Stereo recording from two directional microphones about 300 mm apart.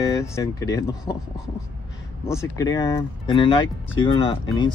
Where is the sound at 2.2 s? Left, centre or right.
Centre.